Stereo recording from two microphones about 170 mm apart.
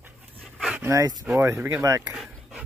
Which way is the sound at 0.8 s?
20° right (ahead or behind).